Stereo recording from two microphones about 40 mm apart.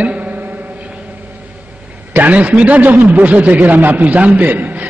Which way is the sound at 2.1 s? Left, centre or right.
Right.